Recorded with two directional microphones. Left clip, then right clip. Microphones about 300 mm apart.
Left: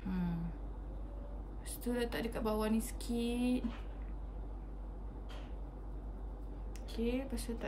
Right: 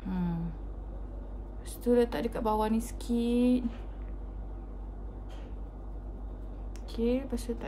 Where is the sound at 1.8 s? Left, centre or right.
Centre.